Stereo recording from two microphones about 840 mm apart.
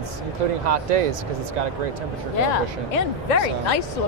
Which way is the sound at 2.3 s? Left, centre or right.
Left.